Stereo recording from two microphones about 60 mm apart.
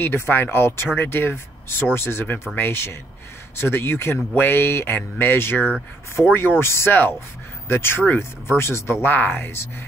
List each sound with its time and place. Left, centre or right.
0.0 s speech: left
6.2 s speech: centre
6.6 s speech: left
6.9 s speech: left
9.0 s speech: left